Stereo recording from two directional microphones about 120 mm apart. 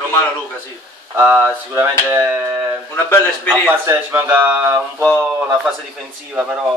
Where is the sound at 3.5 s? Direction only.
15° right (ahead or behind).